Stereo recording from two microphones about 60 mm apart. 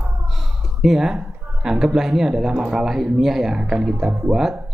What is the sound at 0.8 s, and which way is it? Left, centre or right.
Speech, centre.